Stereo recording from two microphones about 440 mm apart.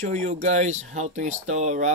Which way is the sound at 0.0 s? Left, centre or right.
Centre.